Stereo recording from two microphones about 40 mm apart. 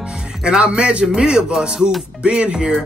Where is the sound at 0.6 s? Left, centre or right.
Right.